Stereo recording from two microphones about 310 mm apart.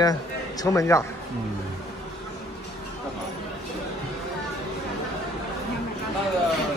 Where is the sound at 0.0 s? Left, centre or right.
Centre.